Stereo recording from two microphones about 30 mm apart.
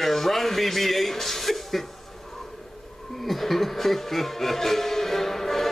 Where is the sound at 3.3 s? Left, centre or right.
Centre.